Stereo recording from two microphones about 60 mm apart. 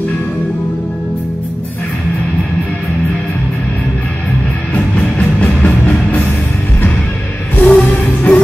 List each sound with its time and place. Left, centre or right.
4.7 s music: left
7.6 s music: left